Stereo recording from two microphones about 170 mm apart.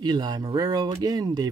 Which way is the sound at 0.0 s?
25° right (ahead or behind).